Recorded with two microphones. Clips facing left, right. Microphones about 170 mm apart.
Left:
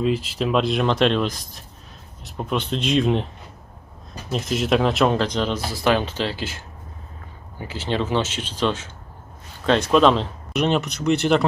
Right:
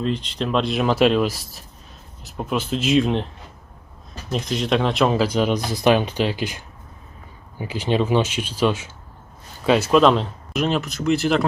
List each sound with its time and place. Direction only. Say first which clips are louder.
0.0 s speech: left 2 dB; 5° left (ahead or behind)
4.3 s speech: left 1 dB; centre (ahead or behind)